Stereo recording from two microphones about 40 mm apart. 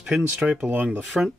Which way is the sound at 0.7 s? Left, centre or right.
Right.